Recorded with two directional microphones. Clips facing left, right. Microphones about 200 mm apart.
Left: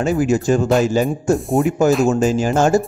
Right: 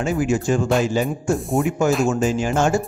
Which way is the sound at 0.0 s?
40° left (ahead or behind).